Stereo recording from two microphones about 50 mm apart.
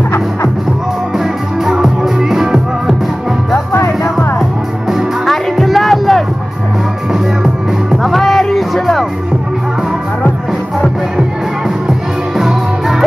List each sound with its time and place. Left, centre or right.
1.1 s music: centre
3.5 s music: left
4.4 s music: centre
5.2 s music: centre
7.1 s music: centre
12.4 s music: centre